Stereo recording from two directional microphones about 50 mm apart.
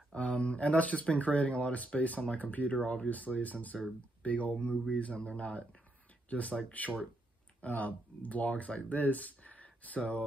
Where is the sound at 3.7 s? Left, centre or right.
Centre.